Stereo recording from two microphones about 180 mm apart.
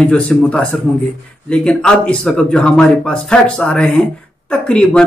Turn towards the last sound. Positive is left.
turn(degrees=5)  # may be behind; listen again after turning